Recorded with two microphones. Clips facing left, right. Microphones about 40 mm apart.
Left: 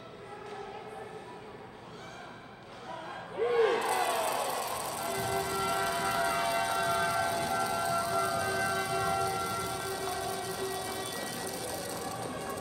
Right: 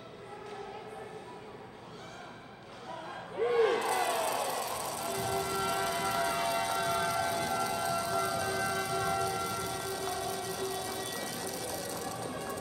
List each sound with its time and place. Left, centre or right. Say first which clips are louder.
3.3 s a sound: left 1 dB; centre
3.9 s music: left 1 dB; centre
7.5 s siren: left 2 dB; left